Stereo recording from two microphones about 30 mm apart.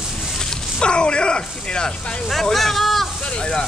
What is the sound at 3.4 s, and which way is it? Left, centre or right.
Speech, left.